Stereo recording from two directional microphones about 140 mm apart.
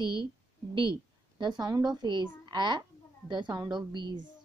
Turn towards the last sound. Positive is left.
turn(degrees=-35)  # may be behind; listen again after turning